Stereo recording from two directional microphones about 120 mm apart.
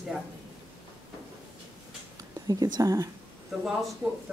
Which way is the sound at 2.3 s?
35° right (ahead or behind).